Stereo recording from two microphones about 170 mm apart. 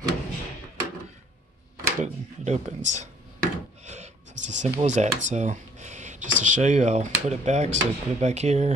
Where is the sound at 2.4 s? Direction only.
45° right (ahead or behind).